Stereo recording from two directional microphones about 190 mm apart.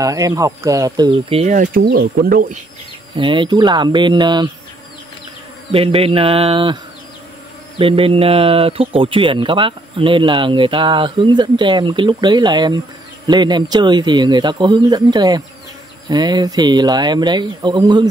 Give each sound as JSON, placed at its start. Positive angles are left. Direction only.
{"t": 0.0, "sound": "speech", "side_deg": -20}
{"t": 1.4, "sound": "speech", "side_deg": -40}
{"t": 1.9, "sound": "speech", "side_deg": -50}
{"t": 3.2, "sound": "speech", "side_deg": -25}
{"t": 5.7, "sound": "speech", "side_deg": -30}
{"t": 7.8, "sound": "speech", "side_deg": -30}